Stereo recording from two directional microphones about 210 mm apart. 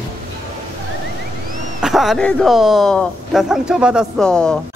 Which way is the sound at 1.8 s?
Centre (ahead or behind).